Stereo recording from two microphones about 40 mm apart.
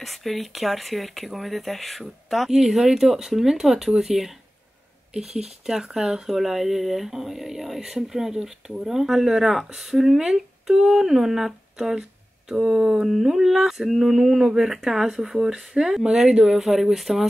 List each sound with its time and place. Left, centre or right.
0.0 s speech: centre
13.0 s speech: centre